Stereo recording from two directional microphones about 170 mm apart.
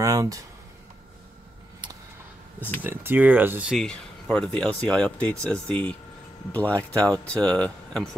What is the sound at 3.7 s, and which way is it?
Speech, 5° left (ahead or behind).